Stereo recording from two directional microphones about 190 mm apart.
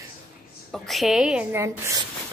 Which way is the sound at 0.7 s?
Centre (ahead or behind).